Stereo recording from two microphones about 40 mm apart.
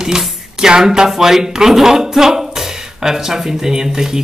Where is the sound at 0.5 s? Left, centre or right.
Centre.